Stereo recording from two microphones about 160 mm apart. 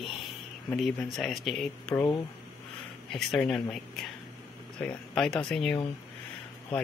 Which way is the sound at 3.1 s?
Centre (ahead or behind).